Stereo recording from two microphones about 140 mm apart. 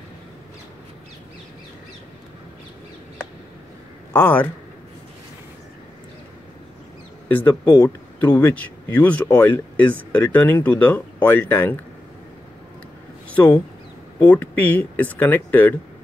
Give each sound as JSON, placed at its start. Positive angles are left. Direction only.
{"t": 4.1, "sound": "speech", "side_deg": 10}
{"t": 7.2, "sound": "speech", "side_deg": 10}
{"t": 13.3, "sound": "speech", "side_deg": 10}